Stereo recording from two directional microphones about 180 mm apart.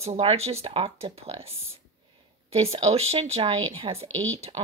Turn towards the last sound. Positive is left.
turn(degrees=-30)  # may be behind; listen again after turning